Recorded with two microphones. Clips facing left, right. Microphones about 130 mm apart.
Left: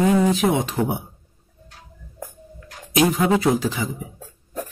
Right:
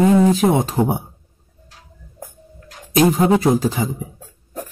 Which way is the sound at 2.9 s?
40° right (ahead or behind).